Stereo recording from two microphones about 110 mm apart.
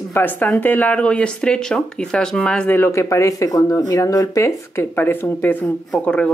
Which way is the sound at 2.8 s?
25° left (ahead or behind).